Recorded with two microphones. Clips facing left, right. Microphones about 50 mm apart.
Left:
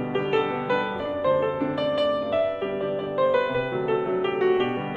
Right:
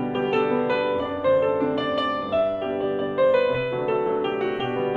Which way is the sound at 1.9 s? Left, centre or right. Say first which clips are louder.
Left 1 dB; right.